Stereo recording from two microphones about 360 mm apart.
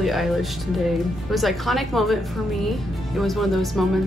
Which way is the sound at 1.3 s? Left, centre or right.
Centre.